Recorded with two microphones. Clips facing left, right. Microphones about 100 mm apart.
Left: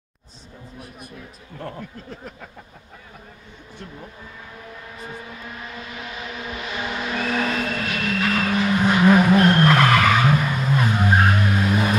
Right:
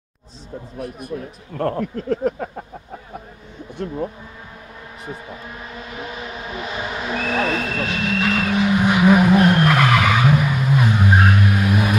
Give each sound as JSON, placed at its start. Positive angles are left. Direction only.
{"t": 0.7, "sound": "a man's voice", "side_deg": -60}
{"t": 7.3, "sound": "speech", "side_deg": -30}
{"t": 8.5, "sound": "vehicle", "side_deg": -15}